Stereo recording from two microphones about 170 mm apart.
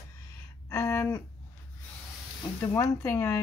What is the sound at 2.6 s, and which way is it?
Speech, 15° left (ahead or behind).